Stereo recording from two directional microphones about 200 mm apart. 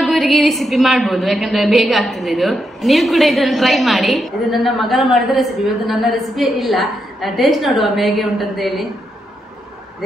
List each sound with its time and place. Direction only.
0.0 s a woman's voice: centre (ahead or behind)